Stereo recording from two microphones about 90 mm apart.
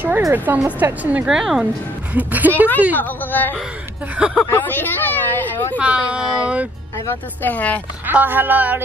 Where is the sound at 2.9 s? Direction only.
20° left (ahead or behind).